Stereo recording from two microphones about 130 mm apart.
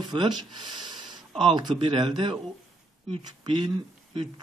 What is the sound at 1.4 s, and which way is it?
Speech, 35° right (ahead or behind).